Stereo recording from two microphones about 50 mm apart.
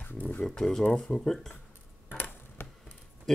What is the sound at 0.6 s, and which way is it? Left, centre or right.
Speech, centre.